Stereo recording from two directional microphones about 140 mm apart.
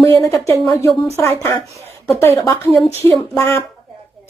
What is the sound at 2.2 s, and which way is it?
Speech, 15° left (ahead or behind).